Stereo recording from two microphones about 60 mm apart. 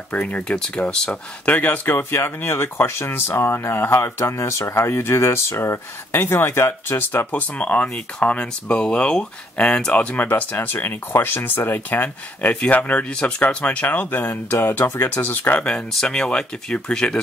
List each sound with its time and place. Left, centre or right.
0.1 s speech: left
7.5 s speech: left
10.1 s speech: left
15.6 s speech: centre